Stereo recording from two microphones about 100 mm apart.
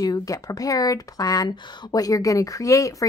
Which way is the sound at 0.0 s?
40° left (ahead or behind).